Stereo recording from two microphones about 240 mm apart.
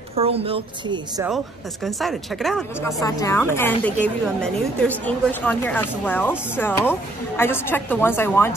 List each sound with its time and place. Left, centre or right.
0.1 s speech: right
1.2 s speech: centre
3.0 s a woman's voice: centre